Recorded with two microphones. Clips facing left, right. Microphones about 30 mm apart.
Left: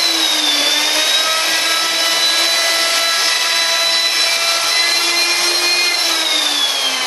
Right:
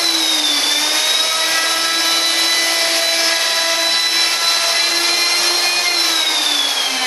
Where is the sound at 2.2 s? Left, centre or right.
Centre.